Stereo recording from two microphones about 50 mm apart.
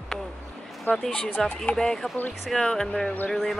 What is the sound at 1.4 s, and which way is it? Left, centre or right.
Speech, centre.